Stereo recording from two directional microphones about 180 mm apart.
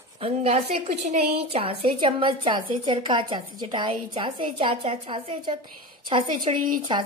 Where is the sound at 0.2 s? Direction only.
35° right (ahead or behind).